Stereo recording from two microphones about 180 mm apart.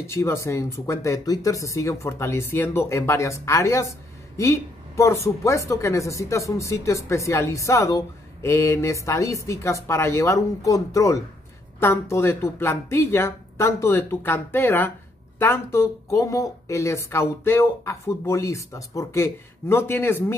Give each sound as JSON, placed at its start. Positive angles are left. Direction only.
{"t": 0.0, "sound": "speech", "side_deg": 15}